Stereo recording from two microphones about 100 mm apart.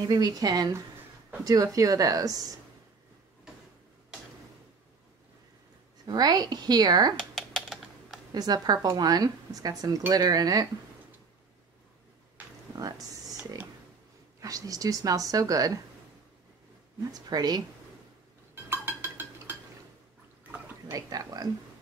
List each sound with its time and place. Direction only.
0.0 s speech: 40° right (ahead or behind)
6.0 s speech: 45° right (ahead or behind)
7.2 s typing: 5° left (ahead or behind)
8.3 s speech: 40° right (ahead or behind)
14.4 s speech: 35° right (ahead or behind)
17.1 s speech: 40° right (ahead or behind)
18.5 s a sound: 20° right (ahead or behind)
20.9 s speech: 40° right (ahead or behind)